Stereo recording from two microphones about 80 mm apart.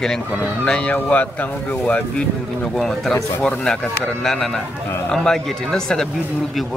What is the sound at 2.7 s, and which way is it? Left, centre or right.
Speech, centre.